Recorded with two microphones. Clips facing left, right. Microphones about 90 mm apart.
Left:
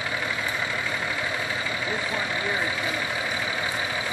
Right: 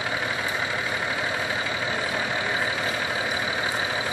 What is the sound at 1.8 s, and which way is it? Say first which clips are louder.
Vehicle: right 1 dB; 25° right (ahead or behind).